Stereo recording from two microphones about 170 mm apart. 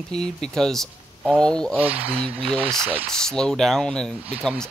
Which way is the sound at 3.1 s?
5° left (ahead or behind).